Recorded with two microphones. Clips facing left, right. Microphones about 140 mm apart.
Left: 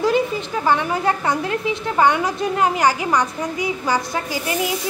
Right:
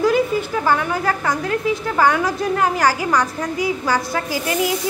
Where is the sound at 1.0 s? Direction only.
25° left (ahead or behind).